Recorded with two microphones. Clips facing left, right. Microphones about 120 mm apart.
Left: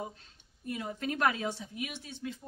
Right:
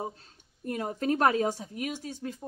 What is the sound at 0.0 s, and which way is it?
A woman's voice, 35° right (ahead or behind).